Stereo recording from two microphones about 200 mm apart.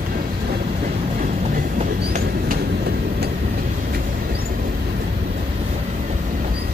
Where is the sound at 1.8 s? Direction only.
35° right (ahead or behind).